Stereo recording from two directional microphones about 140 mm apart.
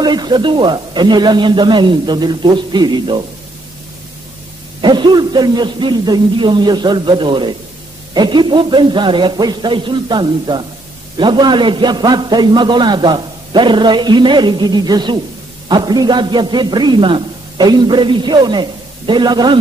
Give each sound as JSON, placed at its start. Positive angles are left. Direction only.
{"t": 0.0, "sound": "a man's voice", "side_deg": -30}
{"t": 4.8, "sound": "a man's voice", "side_deg": -35}